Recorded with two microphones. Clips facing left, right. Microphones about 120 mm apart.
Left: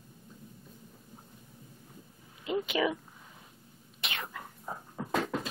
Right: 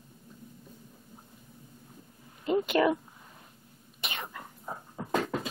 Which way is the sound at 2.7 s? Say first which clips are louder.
Right 5 dB; 50° right (ahead or behind).